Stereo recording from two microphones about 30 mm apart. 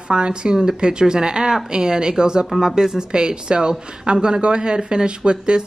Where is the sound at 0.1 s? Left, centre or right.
Right.